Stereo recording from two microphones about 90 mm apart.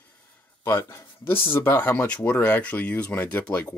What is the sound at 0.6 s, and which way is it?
Speech, 30° left (ahead or behind).